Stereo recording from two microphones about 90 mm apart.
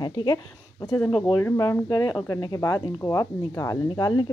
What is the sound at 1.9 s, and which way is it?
A woman's voice, 45° left (ahead or behind).